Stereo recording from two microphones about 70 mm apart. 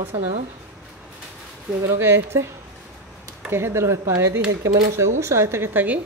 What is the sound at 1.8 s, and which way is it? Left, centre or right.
Speech, right.